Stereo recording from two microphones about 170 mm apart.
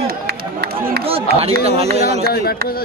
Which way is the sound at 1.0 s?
35° right (ahead or behind).